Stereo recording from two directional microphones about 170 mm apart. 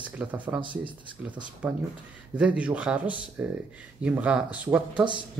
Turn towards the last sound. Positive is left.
turn(degrees=-30)  # may be behind; listen again after turning